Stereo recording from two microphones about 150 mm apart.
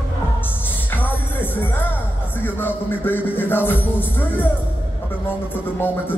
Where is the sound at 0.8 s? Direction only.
10° left (ahead or behind).